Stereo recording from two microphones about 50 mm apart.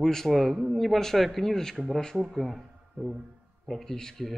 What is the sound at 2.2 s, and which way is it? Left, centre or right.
Speech, centre.